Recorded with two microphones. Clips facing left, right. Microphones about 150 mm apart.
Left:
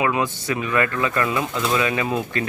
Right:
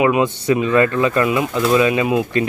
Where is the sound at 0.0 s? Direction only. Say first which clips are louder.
Right 6 dB; 20° right (ahead or behind).